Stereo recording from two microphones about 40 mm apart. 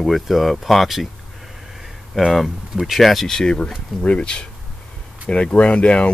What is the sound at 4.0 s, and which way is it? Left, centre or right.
Speech, left.